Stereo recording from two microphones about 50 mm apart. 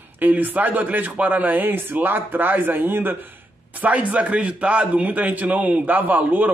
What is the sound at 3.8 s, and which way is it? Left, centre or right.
A man's voice, right.